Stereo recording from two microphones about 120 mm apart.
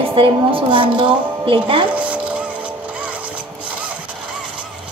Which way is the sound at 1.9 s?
10° right (ahead or behind).